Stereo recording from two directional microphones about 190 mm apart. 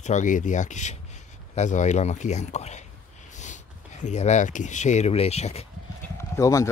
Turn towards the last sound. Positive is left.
turn(degrees=15)  # may be behind; listen again after turning